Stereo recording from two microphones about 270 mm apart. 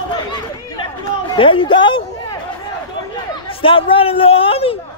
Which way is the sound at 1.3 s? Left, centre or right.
Centre.